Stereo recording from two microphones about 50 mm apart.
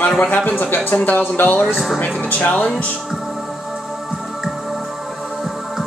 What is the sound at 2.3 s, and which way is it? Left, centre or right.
Speech, left.